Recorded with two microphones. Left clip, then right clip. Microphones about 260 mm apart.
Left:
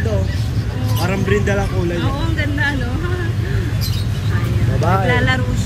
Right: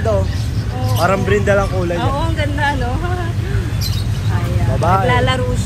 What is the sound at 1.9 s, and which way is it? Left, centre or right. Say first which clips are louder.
Speech: right 3 dB; centre.